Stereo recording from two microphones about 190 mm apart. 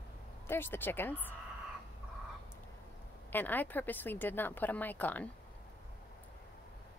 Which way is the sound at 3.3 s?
10° left (ahead or behind).